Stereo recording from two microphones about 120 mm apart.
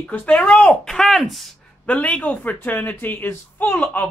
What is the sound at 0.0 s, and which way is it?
Speech, 10° left (ahead or behind).